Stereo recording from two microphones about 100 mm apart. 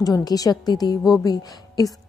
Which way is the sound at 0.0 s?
40° left (ahead or behind).